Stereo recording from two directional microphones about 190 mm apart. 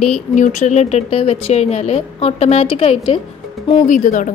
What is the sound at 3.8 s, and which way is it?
Speech, 45° left (ahead or behind).